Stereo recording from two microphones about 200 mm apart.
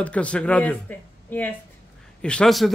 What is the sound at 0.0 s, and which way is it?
A man's voice, 5° left (ahead or behind).